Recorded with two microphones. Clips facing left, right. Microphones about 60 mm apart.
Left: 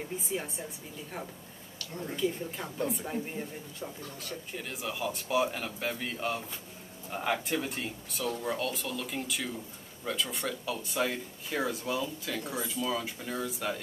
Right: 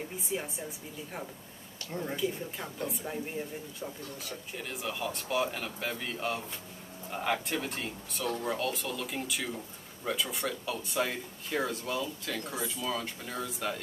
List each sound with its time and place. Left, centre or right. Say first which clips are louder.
0.3 s speech: even; centre
1.8 s a sound: right 3 dB; right
2.1 s speech: left 5 dB; centre